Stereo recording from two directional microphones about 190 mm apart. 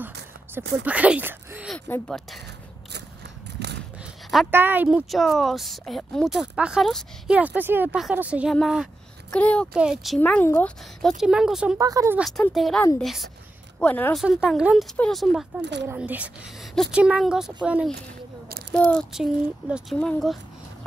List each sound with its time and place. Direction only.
0.8 s speech: 5° right (ahead or behind)
1.7 s a woman's voice: centre (ahead or behind)
3.6 s a sound: 60° right (ahead or behind)
4.5 s a woman's voice: 10° right (ahead or behind)
11.8 s speech: 15° right (ahead or behind)
12.2 s a woman's voice: centre (ahead or behind)
14.2 s a woman's voice: 5° right (ahead or behind)
15.6 s speech: 65° right (ahead or behind)
15.9 s a woman's voice: 10° right (ahead or behind)
18.7 s a woman's voice: 5° left (ahead or behind)